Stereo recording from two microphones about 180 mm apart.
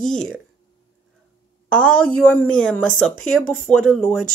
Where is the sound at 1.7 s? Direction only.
5° left (ahead or behind).